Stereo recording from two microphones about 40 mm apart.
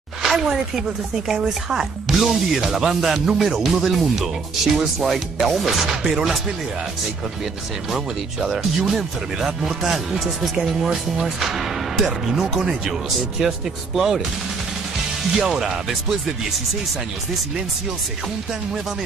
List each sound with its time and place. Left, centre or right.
0.2 s speech: centre
7.9 s speech: centre
15.3 s speech: centre